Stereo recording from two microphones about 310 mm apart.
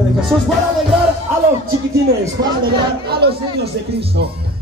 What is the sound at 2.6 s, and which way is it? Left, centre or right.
Music, right.